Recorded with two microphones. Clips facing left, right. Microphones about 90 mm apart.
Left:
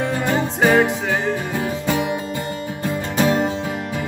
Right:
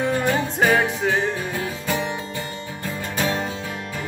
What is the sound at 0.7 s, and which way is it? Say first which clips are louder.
Music: left 4 dB; 20° left (ahead or behind).